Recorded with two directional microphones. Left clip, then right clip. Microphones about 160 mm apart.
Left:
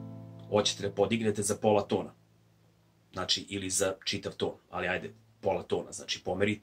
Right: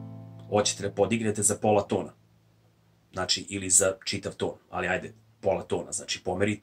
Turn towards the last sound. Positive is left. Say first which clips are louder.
# right 2 dB
turn(degrees=-10)  # may be behind; listen again after turning